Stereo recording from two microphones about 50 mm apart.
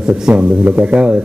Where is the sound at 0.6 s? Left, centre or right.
Right.